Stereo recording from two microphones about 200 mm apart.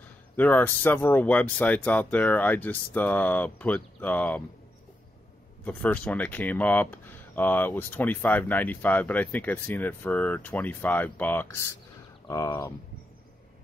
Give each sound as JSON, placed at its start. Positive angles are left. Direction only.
{"t": 0.4, "sound": "speech", "side_deg": 10}
{"t": 5.6, "sound": "speech", "side_deg": 5}